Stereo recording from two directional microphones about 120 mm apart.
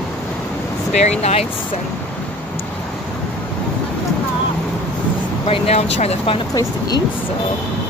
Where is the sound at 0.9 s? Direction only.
65° left (ahead or behind).